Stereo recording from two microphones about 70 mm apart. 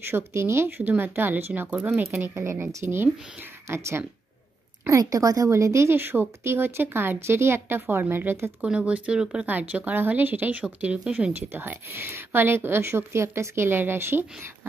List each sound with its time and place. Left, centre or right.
0.0 s speech: right
4.8 s a woman's voice: right
5.5 s speech: right
8.6 s speech: centre; by 14.7 s right